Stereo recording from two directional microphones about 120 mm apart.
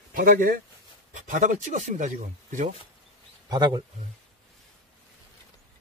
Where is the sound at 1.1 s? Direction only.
90° right.